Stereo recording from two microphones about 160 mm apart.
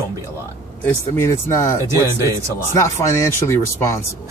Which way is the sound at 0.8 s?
15° left (ahead or behind).